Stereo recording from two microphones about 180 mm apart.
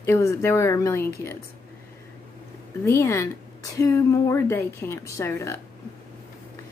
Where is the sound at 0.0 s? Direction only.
15° left (ahead or behind).